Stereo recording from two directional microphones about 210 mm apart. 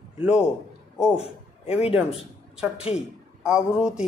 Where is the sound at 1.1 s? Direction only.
30° left (ahead or behind).